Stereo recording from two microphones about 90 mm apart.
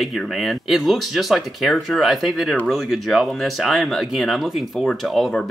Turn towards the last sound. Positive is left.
turn(degrees=0)  # may be behind; listen again after turning